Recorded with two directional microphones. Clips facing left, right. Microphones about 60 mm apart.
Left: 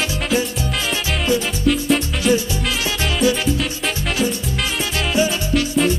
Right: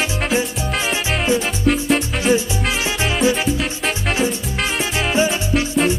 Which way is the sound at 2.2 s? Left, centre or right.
Centre.